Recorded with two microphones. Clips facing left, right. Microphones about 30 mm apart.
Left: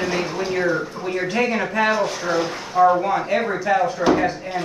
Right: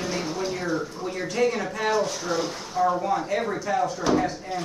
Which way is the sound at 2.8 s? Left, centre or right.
Left.